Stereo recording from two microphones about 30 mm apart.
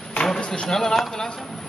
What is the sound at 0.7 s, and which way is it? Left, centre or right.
Speech, centre.